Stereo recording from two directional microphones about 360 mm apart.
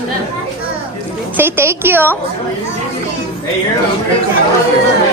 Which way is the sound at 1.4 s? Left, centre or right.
Centre.